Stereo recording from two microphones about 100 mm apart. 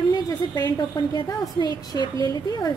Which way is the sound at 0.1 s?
45° left (ahead or behind).